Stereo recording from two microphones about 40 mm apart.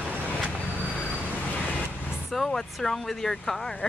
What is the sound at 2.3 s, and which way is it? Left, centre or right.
Speech, centre.